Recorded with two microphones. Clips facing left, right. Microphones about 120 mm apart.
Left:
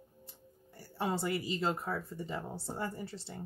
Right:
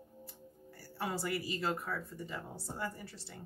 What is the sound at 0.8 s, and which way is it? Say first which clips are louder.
Speech: left 4 dB; 25° left (ahead or behind).